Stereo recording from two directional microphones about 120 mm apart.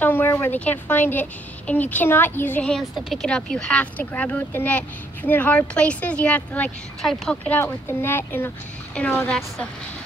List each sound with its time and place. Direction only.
0.0 s speech: 15° left (ahead or behind)
2.8 s speech: centre (ahead or behind)
7.6 s speech: 20° left (ahead or behind)